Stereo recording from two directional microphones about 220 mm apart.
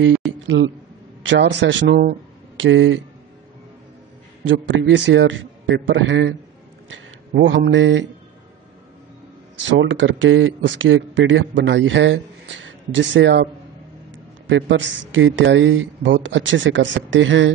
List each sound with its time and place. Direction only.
0.5 s speech: 45° right (ahead or behind)
1.3 s speech: 55° right (ahead or behind)
4.5 s speech: 60° right (ahead or behind)
9.7 s speech: 55° right (ahead or behind)